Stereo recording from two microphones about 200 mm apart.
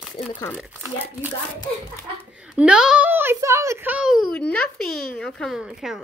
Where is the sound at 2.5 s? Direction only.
5° right (ahead or behind).